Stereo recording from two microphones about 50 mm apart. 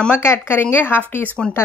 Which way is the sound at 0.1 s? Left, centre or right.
Left.